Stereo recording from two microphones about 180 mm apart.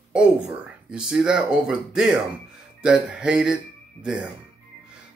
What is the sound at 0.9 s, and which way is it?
Speech, 5° right (ahead or behind).